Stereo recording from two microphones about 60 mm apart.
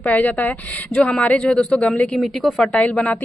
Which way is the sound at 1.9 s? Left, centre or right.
Centre.